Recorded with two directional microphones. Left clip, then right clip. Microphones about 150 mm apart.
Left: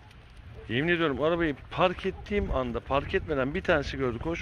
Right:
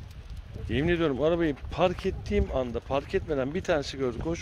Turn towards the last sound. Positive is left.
turn(degrees=-20)  # may be behind; listen again after turning